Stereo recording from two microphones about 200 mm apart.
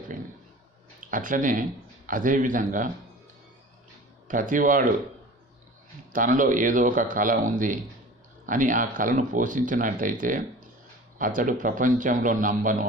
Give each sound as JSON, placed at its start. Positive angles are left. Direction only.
{"t": 1.0, "sound": "speech", "side_deg": -40}
{"t": 4.3, "sound": "speech", "side_deg": -40}
{"t": 6.1, "sound": "speech", "side_deg": -40}